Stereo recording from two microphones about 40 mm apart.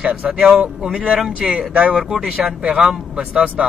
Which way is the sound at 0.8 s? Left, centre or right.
Right.